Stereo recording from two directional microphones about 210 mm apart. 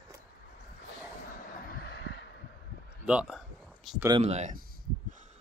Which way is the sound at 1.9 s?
50° left (ahead or behind).